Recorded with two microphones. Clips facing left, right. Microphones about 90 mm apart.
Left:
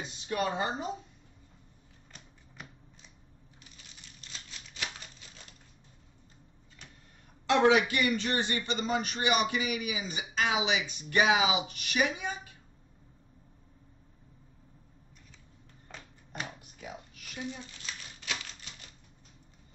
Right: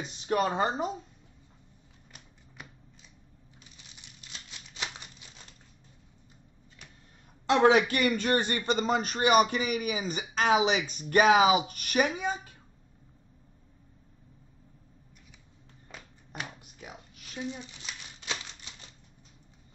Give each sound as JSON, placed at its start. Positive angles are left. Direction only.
{"t": 0.0, "sound": "speech", "side_deg": -40}
{"t": 2.1, "sound": "finger snapping", "side_deg": -5}
{"t": 4.0, "sound": "a sound", "side_deg": -15}
{"t": 7.5, "sound": "speech", "side_deg": -35}
{"t": 7.9, "sound": "speech", "side_deg": -50}
{"t": 17.1, "sound": "typewriter", "side_deg": -25}